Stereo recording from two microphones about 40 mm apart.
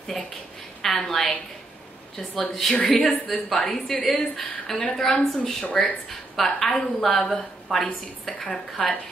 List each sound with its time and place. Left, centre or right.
0.8 s a woman's voice: centre
2.7 s a woman's voice: left
3.1 s a woman's voice: centre
5.7 s a woman's voice: left
6.0 s a woman's voice: centre